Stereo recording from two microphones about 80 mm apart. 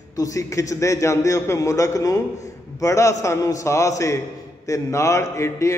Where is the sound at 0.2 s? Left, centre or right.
Left.